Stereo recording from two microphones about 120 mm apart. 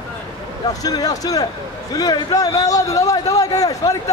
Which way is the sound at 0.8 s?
30° left (ahead or behind).